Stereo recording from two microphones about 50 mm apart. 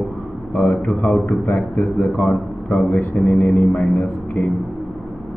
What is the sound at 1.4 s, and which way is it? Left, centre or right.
A man's voice, left.